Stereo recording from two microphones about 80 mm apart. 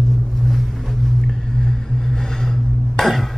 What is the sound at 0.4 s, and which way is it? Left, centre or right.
Vehicle, centre.